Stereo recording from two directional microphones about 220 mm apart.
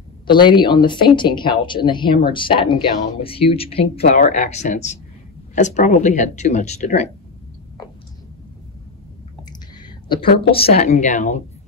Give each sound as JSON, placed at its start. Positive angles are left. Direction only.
{"t": 0.3, "sound": "speech", "side_deg": 20}
{"t": 10.0, "sound": "speech", "side_deg": 40}
{"t": 10.9, "sound": "speech", "side_deg": 35}